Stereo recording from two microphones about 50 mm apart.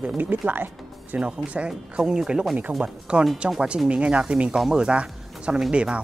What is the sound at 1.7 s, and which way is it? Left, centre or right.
Speech, centre.